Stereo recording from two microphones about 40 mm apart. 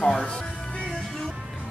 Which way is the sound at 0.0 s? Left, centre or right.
Centre.